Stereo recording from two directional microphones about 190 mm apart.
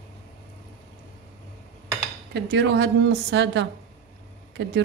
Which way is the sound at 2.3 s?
65° right (ahead or behind).